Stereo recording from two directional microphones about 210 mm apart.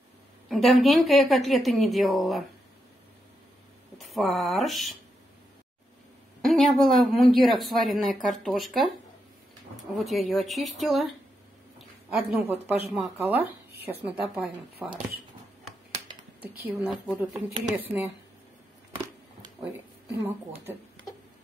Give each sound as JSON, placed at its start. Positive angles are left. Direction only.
{"t": 0.5, "sound": "a woman's voice", "side_deg": 0}
{"t": 4.0, "sound": "speech", "side_deg": 0}
{"t": 6.4, "sound": "a woman's voice", "side_deg": 0}
{"t": 9.9, "sound": "a woman's voice", "side_deg": 0}
{"t": 12.1, "sound": "a woman's voice", "side_deg": -5}
{"t": 16.6, "sound": "a woman's voice", "side_deg": -5}